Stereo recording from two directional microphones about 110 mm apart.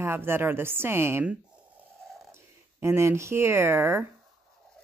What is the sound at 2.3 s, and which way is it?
Speech, 25° right (ahead or behind).